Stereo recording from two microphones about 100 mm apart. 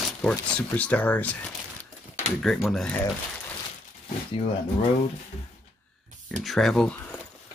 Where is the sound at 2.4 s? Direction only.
Centre (ahead or behind).